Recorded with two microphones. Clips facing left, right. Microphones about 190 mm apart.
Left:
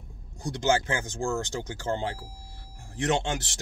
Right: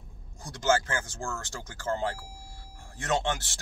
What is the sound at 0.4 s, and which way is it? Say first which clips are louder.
Speech: left 1 dB; 20° left (ahead or behind).